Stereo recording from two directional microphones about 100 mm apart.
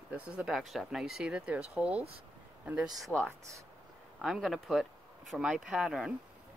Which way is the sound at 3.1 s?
15° left (ahead or behind).